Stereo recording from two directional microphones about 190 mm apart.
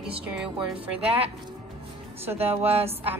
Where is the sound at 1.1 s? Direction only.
30° right (ahead or behind).